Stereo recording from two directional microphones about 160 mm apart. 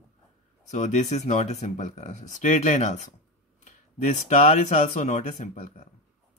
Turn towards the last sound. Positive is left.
turn(degrees=50)  # may be behind; listen again after turning